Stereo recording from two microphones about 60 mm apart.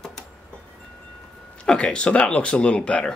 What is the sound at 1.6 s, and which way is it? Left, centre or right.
Speech, centre.